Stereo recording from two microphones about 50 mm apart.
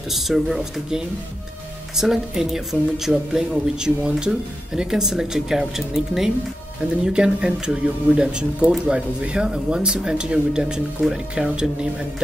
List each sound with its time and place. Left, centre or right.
0.1 s speech: centre
11.0 s speech: centre